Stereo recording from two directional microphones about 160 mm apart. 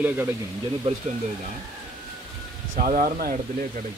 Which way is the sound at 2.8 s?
60° right (ahead or behind).